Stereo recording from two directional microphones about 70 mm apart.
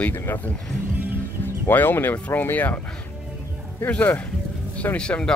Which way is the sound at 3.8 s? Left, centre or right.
Left.